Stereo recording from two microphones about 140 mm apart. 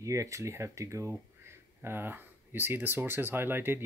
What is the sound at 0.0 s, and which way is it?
Speech, 20° right (ahead or behind).